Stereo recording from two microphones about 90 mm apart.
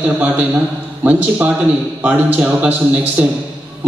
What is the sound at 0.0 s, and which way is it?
A man's voice, 15° right (ahead or behind).